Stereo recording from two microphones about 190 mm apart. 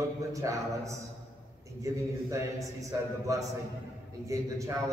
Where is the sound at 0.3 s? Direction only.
15° right (ahead or behind).